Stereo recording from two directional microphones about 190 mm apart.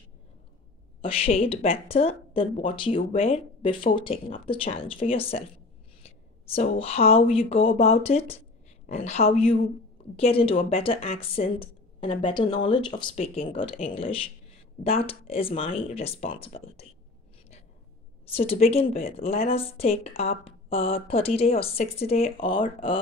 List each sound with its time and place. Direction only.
1.0 s a woman's voice: 30° left (ahead or behind)
18.3 s speech: 30° left (ahead or behind)